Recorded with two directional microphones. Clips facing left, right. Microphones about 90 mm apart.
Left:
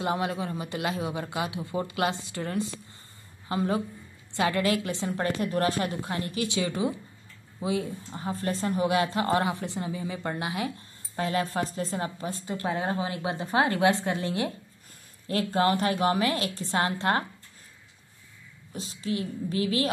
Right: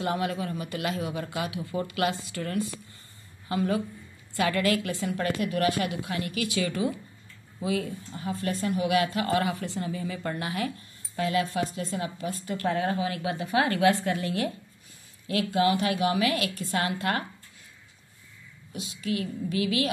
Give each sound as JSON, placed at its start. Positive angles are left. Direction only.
{"t": 0.0, "sound": "a woman's voice", "side_deg": 20}
{"t": 11.1, "sound": "a woman's voice", "side_deg": 35}
{"t": 15.2, "sound": "a woman's voice", "side_deg": 35}
{"t": 18.7, "sound": "a woman's voice", "side_deg": 35}